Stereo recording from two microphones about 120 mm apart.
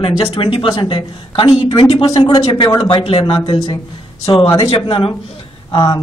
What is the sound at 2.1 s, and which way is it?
Speech, 40° left (ahead or behind).